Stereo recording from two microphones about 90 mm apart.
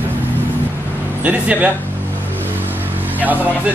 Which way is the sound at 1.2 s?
20° right (ahead or behind).